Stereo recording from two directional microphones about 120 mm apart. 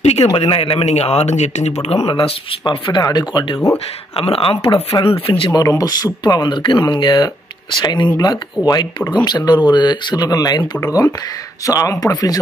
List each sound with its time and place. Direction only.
0.0 s speech: 60° left (ahead or behind)
2.0 s speech: 45° left (ahead or behind)
4.2 s speech: 50° left (ahead or behind)
5.5 s speech: 30° left (ahead or behind)
8.6 s speech: centre (ahead or behind)
9.2 s speech: 35° left (ahead or behind)